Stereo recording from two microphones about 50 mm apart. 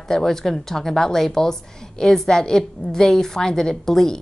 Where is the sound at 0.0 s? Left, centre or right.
Centre.